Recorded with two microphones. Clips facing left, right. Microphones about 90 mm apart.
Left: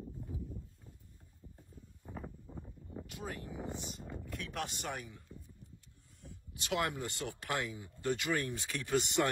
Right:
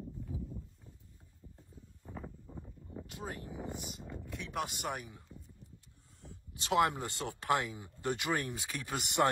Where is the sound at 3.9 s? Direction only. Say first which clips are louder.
Even; 5° right (ahead or behind).